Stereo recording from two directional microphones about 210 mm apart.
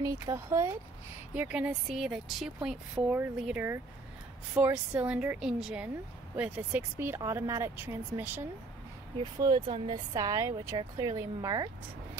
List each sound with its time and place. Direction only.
0.0 s speech: 15° right (ahead or behind)
9.2 s speech: 20° right (ahead or behind)